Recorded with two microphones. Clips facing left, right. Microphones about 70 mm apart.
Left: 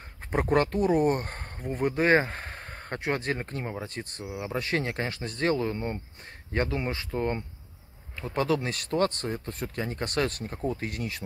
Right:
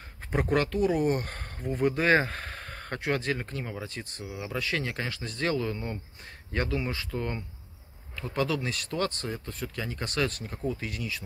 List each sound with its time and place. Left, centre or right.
0.3 s speech: left